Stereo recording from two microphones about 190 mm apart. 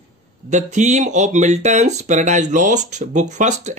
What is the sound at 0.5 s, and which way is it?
Speech, 40° right (ahead or behind).